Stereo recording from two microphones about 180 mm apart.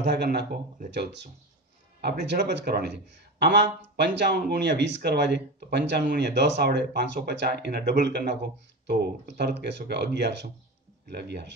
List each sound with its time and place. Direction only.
0.0 s speech: 65° right (ahead or behind)